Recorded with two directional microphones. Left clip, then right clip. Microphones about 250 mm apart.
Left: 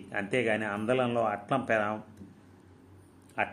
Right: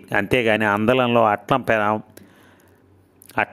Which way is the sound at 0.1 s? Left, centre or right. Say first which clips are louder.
Right 11 dB; right.